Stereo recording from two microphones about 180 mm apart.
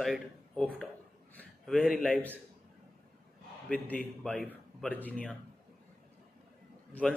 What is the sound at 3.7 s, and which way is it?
A man's voice, 5° left (ahead or behind).